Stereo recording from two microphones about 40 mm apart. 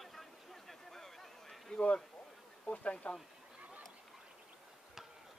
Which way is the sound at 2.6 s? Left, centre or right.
Left.